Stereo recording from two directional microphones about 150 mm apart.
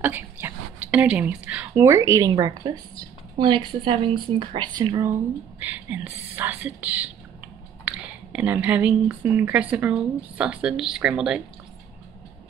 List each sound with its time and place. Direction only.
0.0 s speech: 15° right (ahead or behind)
5.6 s speech: 10° right (ahead or behind)